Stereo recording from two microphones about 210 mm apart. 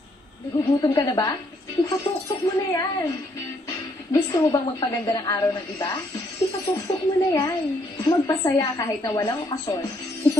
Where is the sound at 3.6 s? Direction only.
15° left (ahead or behind).